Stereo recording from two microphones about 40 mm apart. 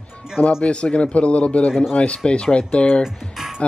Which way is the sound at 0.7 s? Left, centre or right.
Left.